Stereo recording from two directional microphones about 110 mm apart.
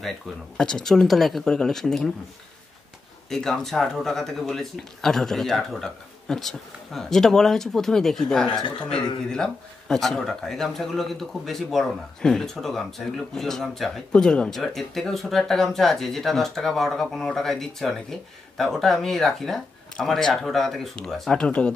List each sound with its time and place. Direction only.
0.6 s speech: 5° left (ahead or behind)
3.3 s speech: 5° left (ahead or behind)